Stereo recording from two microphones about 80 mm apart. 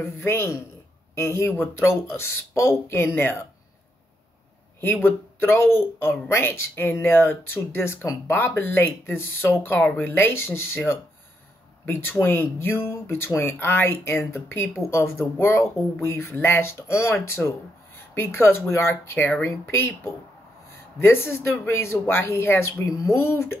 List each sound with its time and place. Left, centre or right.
0.2 s speech: left
5.0 s speech: left
11.8 s speech: left
17.4 s speech: centre
18.1 s speech: left
21.0 s speech: left